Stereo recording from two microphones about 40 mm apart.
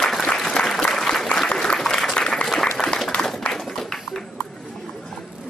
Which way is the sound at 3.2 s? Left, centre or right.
Left.